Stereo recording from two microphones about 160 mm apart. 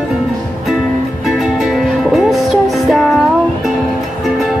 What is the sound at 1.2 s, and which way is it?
Music, 5° right (ahead or behind).